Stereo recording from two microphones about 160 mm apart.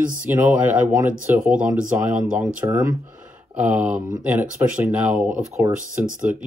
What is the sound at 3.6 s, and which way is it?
Speech, 10° right (ahead or behind).